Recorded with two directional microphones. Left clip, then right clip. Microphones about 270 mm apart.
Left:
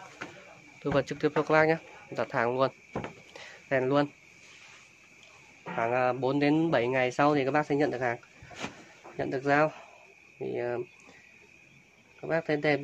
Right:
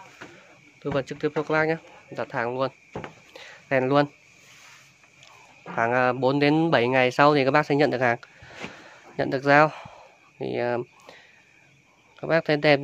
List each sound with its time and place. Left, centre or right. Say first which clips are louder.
0.8 s speech: right 1 dB; centre
3.0 s a sound: right 1 dB; centre
5.8 s speech: right 5 dB; right
12.2 s a man's voice: right 7 dB; right